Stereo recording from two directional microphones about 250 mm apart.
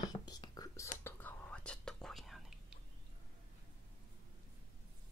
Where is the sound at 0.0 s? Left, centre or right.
Centre.